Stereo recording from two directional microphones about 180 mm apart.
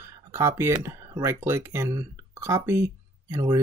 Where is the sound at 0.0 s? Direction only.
15° right (ahead or behind).